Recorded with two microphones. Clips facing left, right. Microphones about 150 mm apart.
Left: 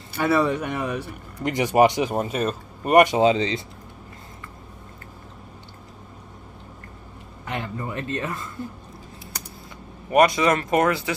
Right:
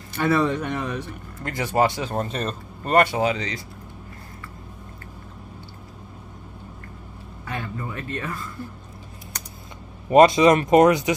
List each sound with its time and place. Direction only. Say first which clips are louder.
0.1 s speech: even; 10° left (ahead or behind); by 3.6 s 25° left (ahead or behind)
7.4 s a sound: left 2 dB; 20° left (ahead or behind)
10.1 s speech: right 4 dB; 25° right (ahead or behind)